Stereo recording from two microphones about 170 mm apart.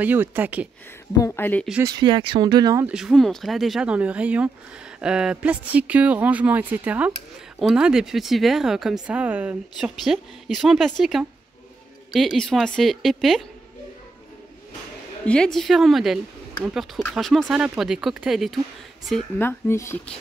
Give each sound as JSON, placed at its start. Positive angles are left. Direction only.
{"t": 0.0, "sound": "speech", "side_deg": -10}
{"t": 1.1, "sound": "speech", "side_deg": 15}
{"t": 1.9, "sound": "speech", "side_deg": -25}
{"t": 2.9, "sound": "speech", "side_deg": 0}
{"t": 15.2, "sound": "speech", "side_deg": 5}
{"t": 19.3, "sound": "speech", "side_deg": 15}